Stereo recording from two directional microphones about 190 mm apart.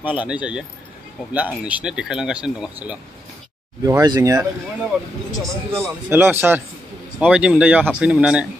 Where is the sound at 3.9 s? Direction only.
20° right (ahead or behind).